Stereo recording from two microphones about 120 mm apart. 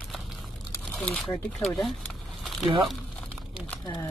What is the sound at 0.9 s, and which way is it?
Speech, 5° left (ahead or behind).